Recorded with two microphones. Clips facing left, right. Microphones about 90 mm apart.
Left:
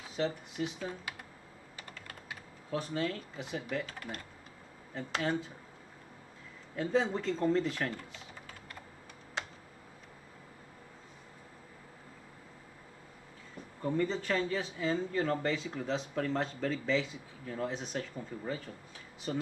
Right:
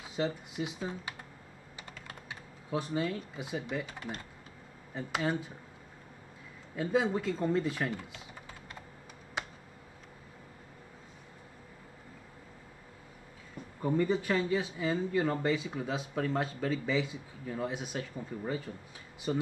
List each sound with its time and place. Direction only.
0.2 s speech: 15° right (ahead or behind)
2.7 s speech: 10° right (ahead or behind)
6.8 s speech: 10° right (ahead or behind)
13.7 s speech: 10° right (ahead or behind)